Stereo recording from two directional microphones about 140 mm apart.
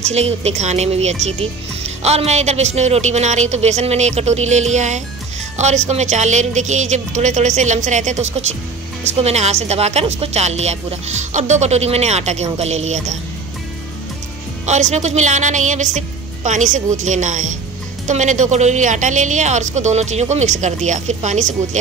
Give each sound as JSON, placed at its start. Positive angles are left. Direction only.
{"t": 0.1, "sound": "a woman's voice", "side_deg": -50}
{"t": 14.7, "sound": "a woman's voice", "side_deg": -60}